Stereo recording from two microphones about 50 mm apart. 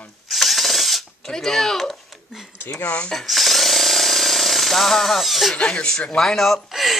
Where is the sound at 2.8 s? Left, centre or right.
Left.